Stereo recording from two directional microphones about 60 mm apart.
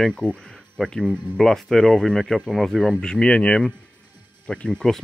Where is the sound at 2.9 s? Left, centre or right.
Centre.